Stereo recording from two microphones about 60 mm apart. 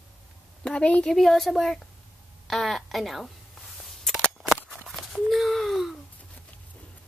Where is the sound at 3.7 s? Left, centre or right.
Centre.